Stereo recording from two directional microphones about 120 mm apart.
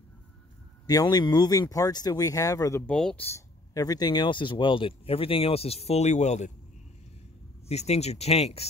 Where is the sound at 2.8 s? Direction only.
10° left (ahead or behind).